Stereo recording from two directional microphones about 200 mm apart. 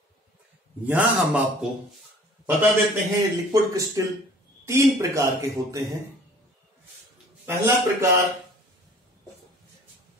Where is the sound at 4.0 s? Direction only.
15° right (ahead or behind).